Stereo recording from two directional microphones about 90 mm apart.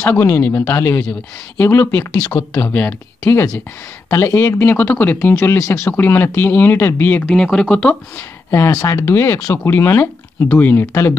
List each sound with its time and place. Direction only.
0.2 s speech: 25° left (ahead or behind)
7.2 s speech: 5° left (ahead or behind)
8.5 s speech: 30° left (ahead or behind)